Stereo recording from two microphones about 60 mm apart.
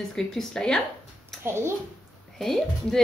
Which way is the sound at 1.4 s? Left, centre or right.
Right.